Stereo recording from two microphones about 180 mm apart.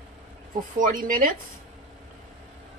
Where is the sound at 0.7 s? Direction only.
50° right (ahead or behind).